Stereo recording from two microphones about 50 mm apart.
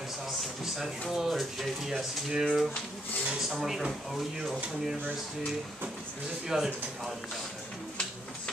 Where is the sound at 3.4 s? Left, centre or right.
Centre.